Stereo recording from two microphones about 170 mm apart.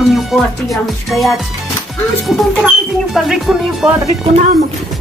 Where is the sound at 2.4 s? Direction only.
Centre (ahead or behind).